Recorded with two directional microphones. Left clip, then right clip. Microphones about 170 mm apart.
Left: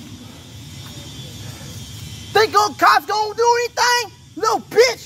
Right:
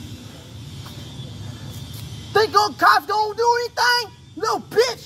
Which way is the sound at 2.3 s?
10° right (ahead or behind).